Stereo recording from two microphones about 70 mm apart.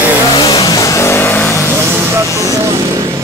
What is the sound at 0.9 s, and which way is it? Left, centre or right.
Vehicle, left.